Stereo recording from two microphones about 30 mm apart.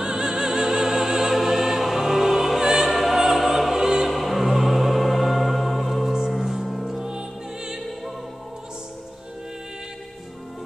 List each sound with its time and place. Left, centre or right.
0.0 s music: right
2.8 s opera: centre
3.3 s music: centre
3.8 s opera: centre
4.1 s music: centre
7.0 s music: right